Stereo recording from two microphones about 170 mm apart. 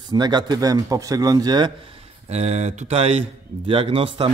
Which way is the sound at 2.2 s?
40° right (ahead or behind).